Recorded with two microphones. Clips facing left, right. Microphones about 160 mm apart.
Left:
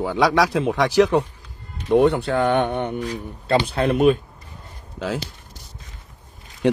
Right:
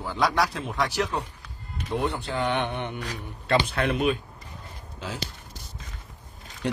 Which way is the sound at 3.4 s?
30° left (ahead or behind).